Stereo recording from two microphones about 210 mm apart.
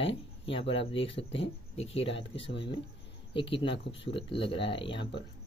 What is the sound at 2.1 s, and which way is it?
Speech, 25° left (ahead or behind).